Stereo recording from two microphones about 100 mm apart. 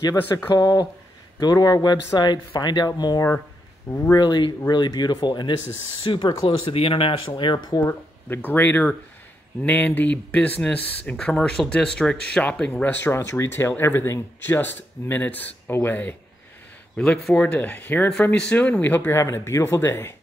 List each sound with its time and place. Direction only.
0.5 s speech: 40° left (ahead or behind)
6.4 s speech: 65° left (ahead or behind); by 7.9 s 40° left (ahead or behind)
8.5 s speech: 20° left (ahead or behind)